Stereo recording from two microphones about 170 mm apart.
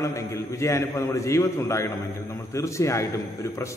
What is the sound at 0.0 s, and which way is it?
A man's voice, 15° left (ahead or behind).